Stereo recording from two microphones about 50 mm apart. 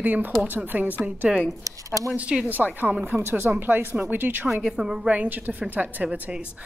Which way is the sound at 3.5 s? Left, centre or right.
Right.